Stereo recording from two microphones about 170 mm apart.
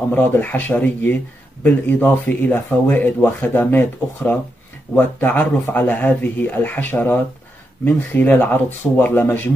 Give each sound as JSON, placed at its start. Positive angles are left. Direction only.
{"t": 0.1, "sound": "speech", "side_deg": 10}